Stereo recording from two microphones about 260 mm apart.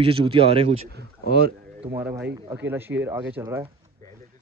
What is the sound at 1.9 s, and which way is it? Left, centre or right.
Speech, centre.